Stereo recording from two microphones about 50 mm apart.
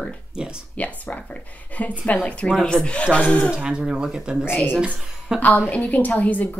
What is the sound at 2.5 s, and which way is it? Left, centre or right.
Speech, centre.